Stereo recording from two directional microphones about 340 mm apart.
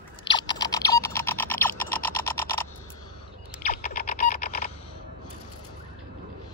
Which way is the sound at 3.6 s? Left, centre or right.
Left.